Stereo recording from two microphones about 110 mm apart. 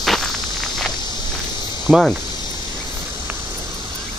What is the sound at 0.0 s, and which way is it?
Walk, centre (ahead or behind).